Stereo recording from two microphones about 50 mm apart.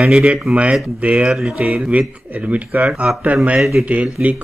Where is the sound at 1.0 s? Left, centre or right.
Centre.